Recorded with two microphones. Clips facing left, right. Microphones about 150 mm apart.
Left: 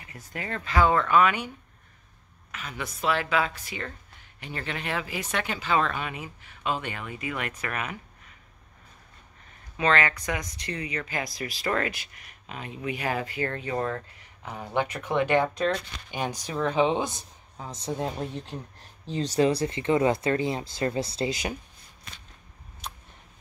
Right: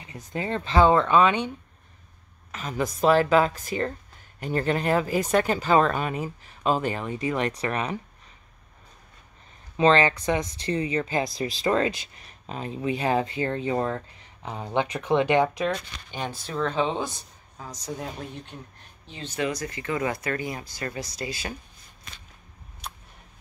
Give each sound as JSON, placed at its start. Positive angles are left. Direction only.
{"t": 0.0, "sound": "speech", "side_deg": -20}
{"t": 2.5, "sound": "speech", "side_deg": -40}
{"t": 9.8, "sound": "speech", "side_deg": -30}
{"t": 16.1, "sound": "speech", "side_deg": 15}